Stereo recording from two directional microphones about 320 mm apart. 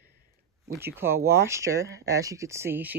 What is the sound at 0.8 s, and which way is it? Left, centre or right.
Speech, centre.